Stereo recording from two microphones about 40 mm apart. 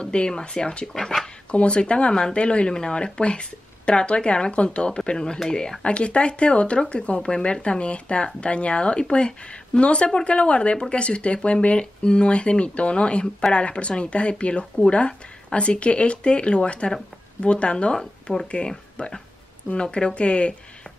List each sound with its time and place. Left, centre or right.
0.0 s speech: left
0.9 s speech: centre
1.5 s speech: left
5.9 s speech: left
18.2 s speech: centre